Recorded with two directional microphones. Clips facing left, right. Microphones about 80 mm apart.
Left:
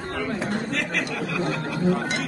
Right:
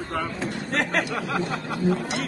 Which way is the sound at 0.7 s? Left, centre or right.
Right.